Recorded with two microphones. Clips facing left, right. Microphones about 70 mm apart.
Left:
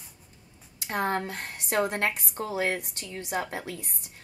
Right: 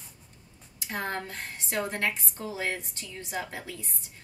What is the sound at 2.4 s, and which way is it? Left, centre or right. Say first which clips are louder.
Speech: left 5 dB; left.